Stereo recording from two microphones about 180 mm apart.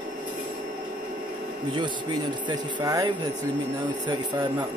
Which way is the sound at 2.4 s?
25° right (ahead or behind).